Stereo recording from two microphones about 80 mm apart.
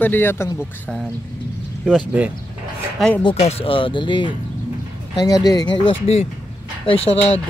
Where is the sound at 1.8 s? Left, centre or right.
Centre.